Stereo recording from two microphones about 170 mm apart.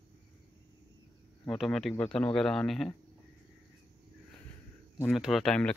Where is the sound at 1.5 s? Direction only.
Centre (ahead or behind).